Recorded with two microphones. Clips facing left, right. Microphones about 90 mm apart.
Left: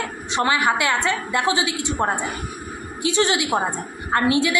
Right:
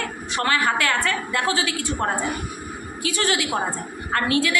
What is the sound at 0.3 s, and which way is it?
A woman's voice, 15° left (ahead or behind).